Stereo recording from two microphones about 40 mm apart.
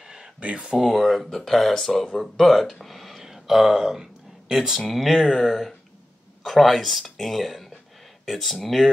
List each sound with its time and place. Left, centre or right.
0.0 s a sound: centre
0.4 s speech: right
0.9 s speech: centre
4.7 s speech: centre